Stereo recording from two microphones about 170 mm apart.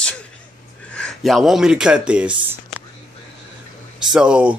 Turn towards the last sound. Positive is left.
turn(degrees=-5)  # may be behind; listen again after turning